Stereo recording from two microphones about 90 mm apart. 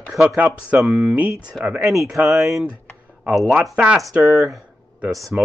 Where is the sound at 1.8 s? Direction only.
35° right (ahead or behind).